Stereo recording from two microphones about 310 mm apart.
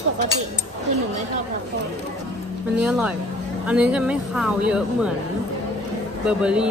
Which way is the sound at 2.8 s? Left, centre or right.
Centre.